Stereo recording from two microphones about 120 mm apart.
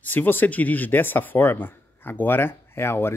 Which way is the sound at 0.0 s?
15° left (ahead or behind).